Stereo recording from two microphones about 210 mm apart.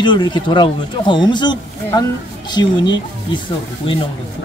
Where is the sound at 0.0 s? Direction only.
20° left (ahead or behind).